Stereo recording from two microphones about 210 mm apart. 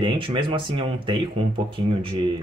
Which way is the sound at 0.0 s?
25° right (ahead or behind).